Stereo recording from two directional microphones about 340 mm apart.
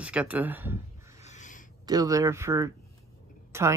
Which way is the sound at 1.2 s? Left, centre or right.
Left.